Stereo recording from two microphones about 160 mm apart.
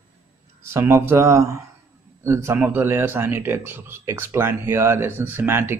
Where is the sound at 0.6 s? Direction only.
15° right (ahead or behind).